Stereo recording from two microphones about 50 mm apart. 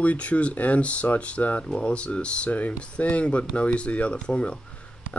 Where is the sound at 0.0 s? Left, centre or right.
Left.